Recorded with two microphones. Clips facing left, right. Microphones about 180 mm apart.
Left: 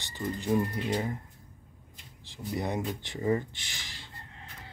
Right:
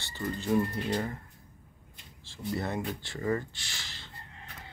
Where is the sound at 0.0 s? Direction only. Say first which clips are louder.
Left 1 dB; 15° left (ahead or behind).